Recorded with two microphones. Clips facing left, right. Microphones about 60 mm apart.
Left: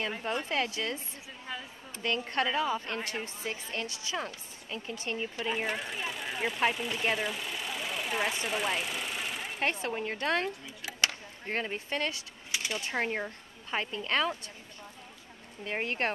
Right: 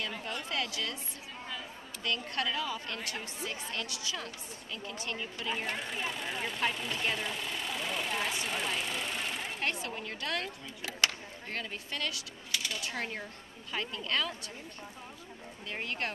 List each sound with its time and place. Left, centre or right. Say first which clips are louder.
0.0 s a woman's voice: left 5 dB; left
2.0 s a woman's voice: left 4 dB; left
5.5 s speech: left 1 dB; centre
9.6 s a woman's voice: left 7 dB; left
10.9 s speech: left 1 dB; centre
11.4 s speech: left 6 dB; left
15.6 s speech: left 5 dB; left